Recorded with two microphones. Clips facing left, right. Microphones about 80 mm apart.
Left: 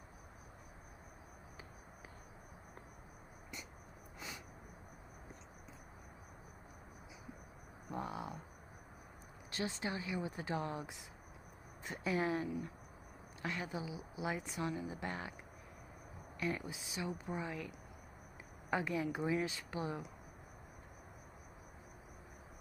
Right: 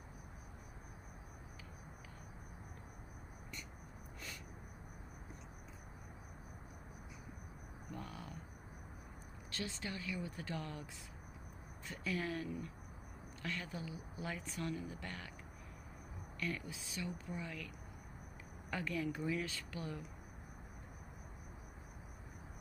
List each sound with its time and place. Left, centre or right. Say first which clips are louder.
7.9 s a sound: left 7 dB; left
9.6 s a woman's voice: left 4 dB; left; by 15.0 s centre
15.0 s a woman's voice: left 6 dB; left
16.3 s a woman's voice: left 3 dB; left
18.7 s a woman's voice: left 3 dB; left